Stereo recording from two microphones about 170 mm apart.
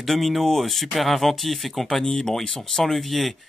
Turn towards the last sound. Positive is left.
turn(degrees=0)  # may be behind; listen again after turning